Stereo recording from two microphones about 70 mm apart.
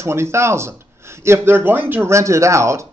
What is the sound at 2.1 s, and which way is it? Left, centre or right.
Speech, right.